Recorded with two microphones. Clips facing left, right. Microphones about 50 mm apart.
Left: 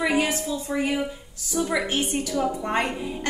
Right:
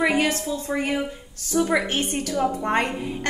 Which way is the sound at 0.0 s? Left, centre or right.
Right.